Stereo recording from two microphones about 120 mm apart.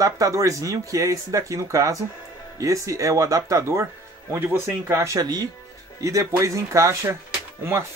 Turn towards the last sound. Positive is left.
turn(degrees=-20)  # may be behind; listen again after turning